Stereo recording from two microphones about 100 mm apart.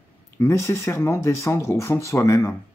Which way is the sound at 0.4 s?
25° left (ahead or behind).